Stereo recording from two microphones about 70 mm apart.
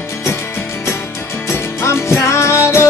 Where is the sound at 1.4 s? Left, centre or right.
Left.